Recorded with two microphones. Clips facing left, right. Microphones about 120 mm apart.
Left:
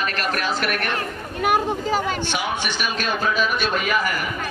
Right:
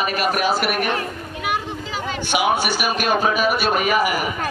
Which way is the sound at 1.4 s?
45° left (ahead or behind).